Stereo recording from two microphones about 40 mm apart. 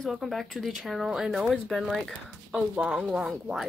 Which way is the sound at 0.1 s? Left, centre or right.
Centre.